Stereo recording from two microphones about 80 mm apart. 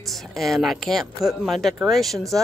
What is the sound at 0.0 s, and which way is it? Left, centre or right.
Speech, centre.